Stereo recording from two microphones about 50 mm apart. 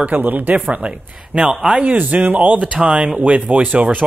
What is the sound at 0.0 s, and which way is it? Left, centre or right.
Speech, right.